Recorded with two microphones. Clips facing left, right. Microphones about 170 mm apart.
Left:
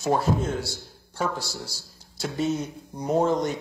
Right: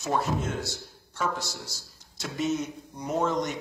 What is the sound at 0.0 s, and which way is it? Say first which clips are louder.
A man's voice: left 4 dB; 35° left (ahead or behind).